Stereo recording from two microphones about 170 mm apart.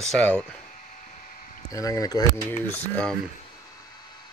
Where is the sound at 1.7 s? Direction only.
20° left (ahead or behind).